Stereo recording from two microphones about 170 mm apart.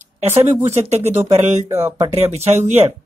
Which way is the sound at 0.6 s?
40° right (ahead or behind).